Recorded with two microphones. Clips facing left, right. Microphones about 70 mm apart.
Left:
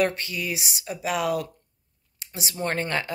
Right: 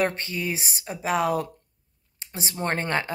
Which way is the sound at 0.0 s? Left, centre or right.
Right.